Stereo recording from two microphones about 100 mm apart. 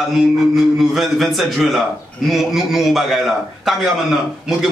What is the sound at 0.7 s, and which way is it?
A man's voice, centre (ahead or behind).